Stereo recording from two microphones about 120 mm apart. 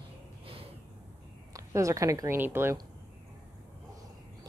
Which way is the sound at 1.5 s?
25° right (ahead or behind).